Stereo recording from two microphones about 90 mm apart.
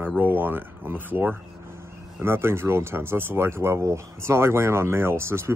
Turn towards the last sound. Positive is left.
turn(degrees=-30)  # may be behind; listen again after turning